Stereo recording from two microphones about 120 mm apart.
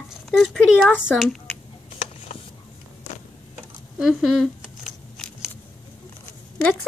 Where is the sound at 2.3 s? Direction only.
70° left (ahead or behind).